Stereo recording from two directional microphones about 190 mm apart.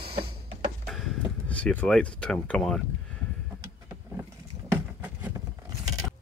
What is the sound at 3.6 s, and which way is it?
Vehicle, 10° right (ahead or behind).